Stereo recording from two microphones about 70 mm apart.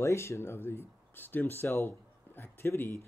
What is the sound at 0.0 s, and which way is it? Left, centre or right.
Speech, left.